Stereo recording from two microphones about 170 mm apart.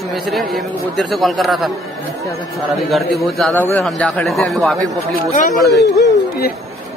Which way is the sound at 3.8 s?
Centre (ahead or behind).